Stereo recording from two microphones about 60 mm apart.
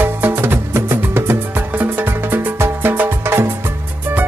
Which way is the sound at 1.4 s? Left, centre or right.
Right.